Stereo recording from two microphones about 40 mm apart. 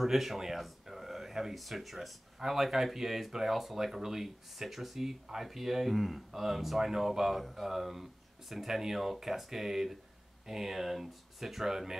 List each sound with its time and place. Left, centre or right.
0.0 s speech: centre